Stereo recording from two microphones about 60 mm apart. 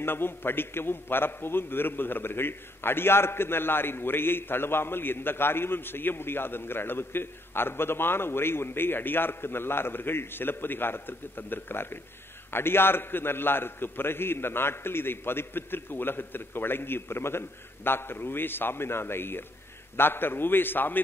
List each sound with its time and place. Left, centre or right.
0.0 s a man's voice: left